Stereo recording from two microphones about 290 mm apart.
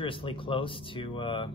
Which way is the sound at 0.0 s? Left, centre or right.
Centre.